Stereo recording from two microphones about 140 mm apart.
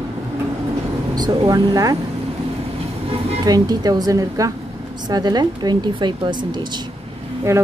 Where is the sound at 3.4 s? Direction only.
30° right (ahead or behind).